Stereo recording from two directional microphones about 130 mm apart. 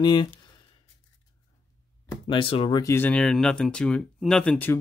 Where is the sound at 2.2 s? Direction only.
40° left (ahead or behind).